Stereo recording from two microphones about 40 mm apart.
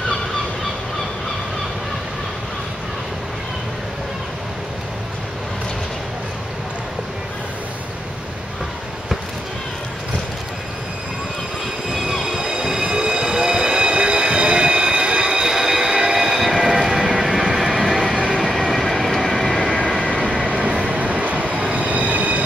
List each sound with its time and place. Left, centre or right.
11.9 s a sound: centre
12.9 s train: centre
18.1 s train: right
18.4 s train: centre
20.4 s vehicle: right
20.8 s train: right